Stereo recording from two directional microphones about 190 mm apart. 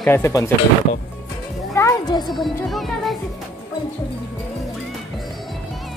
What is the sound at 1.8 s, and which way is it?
Music, 20° left (ahead or behind).